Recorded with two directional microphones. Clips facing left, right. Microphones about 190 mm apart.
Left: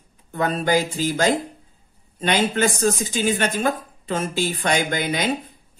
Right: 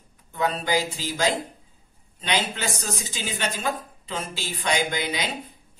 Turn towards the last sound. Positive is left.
turn(degrees=50)  # may be behind; listen again after turning